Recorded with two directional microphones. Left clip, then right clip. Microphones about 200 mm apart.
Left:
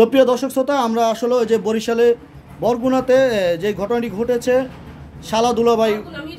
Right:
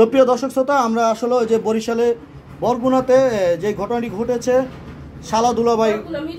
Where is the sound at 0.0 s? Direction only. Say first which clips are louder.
Even; 30° left (ahead or behind).